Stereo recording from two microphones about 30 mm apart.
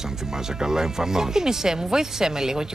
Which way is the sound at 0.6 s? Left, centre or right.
Centre.